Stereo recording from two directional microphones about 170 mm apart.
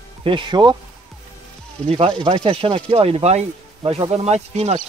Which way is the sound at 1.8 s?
35° right (ahead or behind).